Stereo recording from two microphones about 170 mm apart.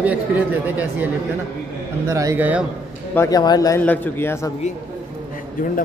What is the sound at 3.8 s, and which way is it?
Speech, 10° left (ahead or behind).